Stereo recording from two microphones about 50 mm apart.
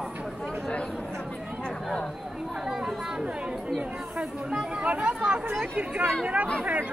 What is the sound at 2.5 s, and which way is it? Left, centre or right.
Speech, centre.